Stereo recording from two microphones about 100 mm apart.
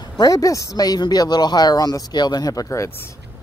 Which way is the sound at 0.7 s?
40° left (ahead or behind).